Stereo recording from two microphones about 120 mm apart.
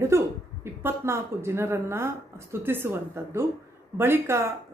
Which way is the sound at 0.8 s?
20° right (ahead or behind).